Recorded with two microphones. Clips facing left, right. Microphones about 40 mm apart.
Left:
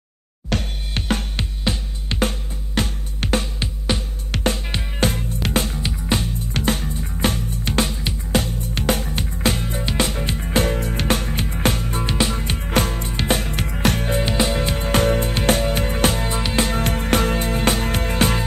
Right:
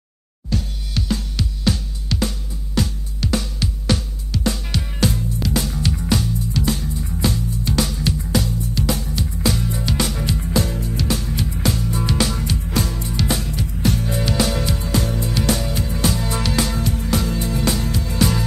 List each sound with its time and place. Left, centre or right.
0.5 s music: left
0.9 s music: left
1.6 s music: left
3.9 s music: left
4.3 s music: left
12.1 s music: left
12.4 s music: left
13.7 s music: left
14.2 s music: left
16.8 s music: left